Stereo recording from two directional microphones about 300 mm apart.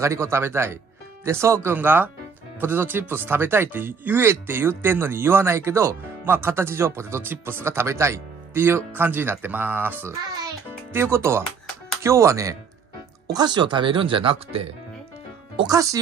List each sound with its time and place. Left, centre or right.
0.0 s speech: centre